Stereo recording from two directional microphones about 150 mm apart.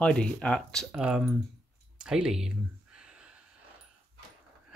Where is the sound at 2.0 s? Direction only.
5° right (ahead or behind).